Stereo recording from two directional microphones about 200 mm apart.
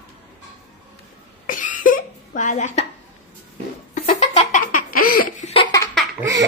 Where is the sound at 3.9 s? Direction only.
35° left (ahead or behind).